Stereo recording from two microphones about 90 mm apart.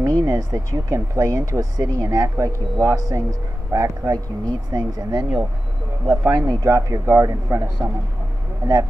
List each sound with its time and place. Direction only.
0.0 s speech: 40° right (ahead or behind)
4.7 s speech: 55° right (ahead or behind); by 7.9 s 35° right (ahead or behind)